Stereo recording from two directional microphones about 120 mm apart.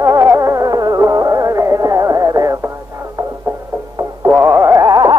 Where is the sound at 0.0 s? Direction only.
25° right (ahead or behind).